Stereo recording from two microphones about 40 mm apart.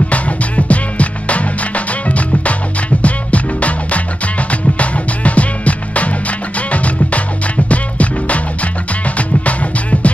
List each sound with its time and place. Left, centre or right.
0.1 s music: left
9.5 s music: left